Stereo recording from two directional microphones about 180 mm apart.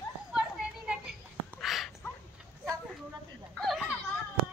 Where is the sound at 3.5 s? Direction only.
Centre (ahead or behind).